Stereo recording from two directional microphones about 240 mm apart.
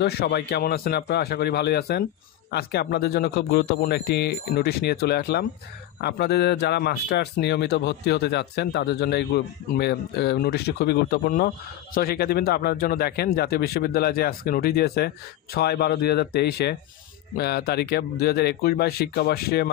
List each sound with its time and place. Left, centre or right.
0.0 s a man's voice: left